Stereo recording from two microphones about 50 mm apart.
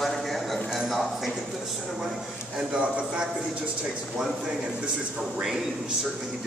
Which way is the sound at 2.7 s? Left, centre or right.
Centre.